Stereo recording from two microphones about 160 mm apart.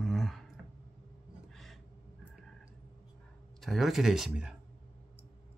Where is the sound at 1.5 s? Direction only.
Centre (ahead or behind).